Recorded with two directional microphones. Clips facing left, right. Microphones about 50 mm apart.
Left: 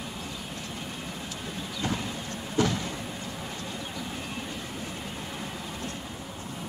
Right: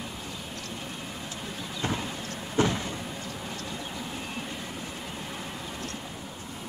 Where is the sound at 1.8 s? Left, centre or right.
Right.